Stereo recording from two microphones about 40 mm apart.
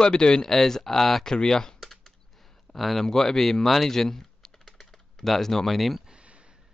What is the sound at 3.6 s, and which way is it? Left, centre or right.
Typing, centre.